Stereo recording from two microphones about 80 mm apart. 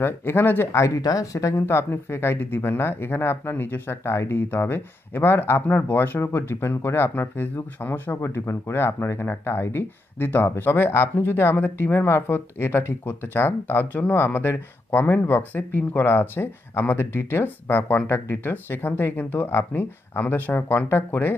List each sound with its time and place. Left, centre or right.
0.0 s speech: left
0.7 s speech: left